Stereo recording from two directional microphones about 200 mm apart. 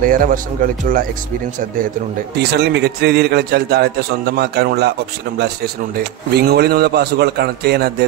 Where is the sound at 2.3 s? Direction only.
55° right (ahead or behind).